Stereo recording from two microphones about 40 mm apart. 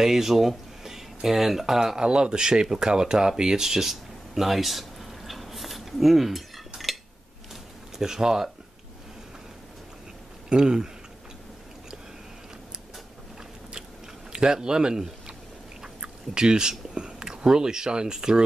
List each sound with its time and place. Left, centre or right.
0.0 s speech: centre
2.0 s speech: right; by 6.4 s centre
8.0 s speech: centre
10.5 s speech: centre
14.3 s speech: centre